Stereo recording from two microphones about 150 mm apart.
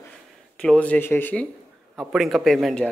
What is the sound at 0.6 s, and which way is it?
Speech, 10° left (ahead or behind).